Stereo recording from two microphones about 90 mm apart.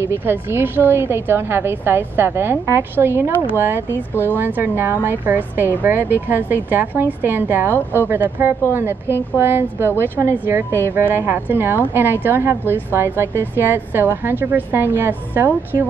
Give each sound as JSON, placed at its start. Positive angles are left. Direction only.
{"t": 0.0, "sound": "a woman's voice", "side_deg": -25}